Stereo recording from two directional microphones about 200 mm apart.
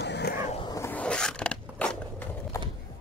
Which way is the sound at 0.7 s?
15° left (ahead or behind).